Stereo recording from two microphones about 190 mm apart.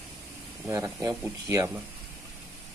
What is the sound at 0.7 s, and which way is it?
Speech, 15° right (ahead or behind).